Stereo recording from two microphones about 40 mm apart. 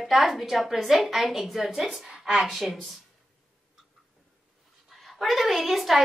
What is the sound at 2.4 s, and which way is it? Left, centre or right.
Speech, centre.